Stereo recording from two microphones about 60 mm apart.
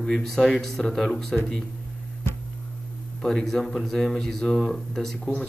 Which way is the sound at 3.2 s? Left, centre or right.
Centre.